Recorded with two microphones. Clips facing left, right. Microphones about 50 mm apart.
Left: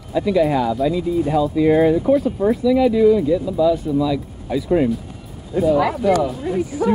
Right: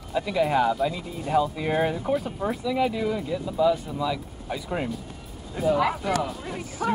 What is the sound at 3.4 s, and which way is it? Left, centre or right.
Speech, centre.